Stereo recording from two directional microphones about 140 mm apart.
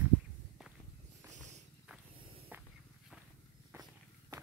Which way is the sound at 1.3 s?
60° right (ahead or behind).